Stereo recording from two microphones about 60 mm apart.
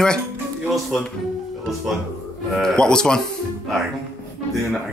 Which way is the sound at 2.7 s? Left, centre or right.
Centre.